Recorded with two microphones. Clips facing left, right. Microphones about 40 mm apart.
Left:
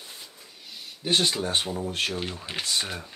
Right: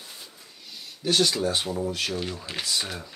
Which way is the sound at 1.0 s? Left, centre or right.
Left.